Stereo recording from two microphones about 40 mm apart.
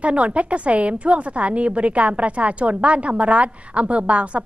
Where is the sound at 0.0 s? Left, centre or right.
Right.